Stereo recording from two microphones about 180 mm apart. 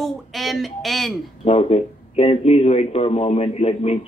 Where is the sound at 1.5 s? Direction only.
35° left (ahead or behind).